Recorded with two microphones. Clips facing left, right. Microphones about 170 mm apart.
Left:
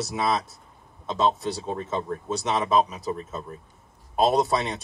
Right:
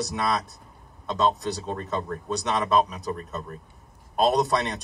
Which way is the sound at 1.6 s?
10° left (ahead or behind).